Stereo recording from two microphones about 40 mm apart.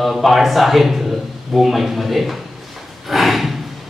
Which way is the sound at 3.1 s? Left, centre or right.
Centre.